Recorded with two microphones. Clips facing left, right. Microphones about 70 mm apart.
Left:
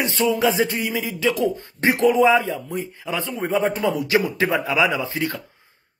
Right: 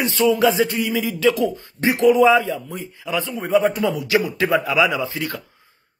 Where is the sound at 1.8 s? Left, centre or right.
Left.